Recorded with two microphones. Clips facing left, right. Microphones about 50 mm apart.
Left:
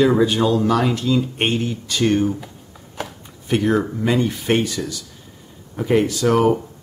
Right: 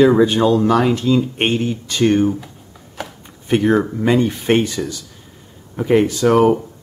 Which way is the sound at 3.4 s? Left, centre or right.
Centre.